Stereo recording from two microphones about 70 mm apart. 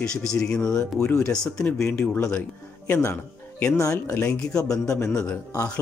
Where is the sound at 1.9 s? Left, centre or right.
Left.